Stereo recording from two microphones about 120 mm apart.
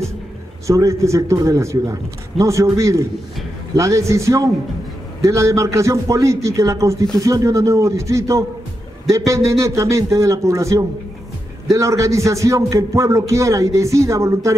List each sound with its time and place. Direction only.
0.7 s speech: 25° right (ahead or behind)